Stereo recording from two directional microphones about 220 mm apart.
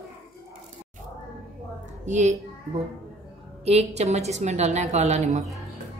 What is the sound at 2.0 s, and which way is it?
Speech, 35° right (ahead or behind).